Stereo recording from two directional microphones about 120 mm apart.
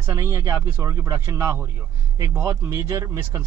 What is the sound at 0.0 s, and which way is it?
Speech, 25° right (ahead or behind).